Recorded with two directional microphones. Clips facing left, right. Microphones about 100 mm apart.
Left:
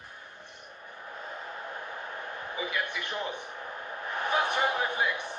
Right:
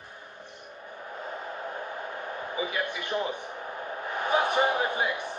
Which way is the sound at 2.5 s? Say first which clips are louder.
Right 2 dB; 30° right (ahead or behind).